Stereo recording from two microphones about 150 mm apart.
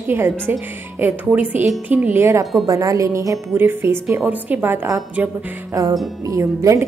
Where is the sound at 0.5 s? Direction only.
15° right (ahead or behind).